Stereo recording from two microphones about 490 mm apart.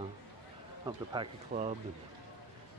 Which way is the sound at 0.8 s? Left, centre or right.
Centre.